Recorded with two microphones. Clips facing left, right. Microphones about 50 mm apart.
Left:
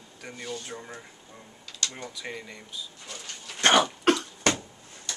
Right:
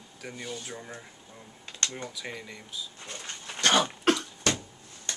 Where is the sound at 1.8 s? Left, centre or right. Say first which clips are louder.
Right 1 dB; right.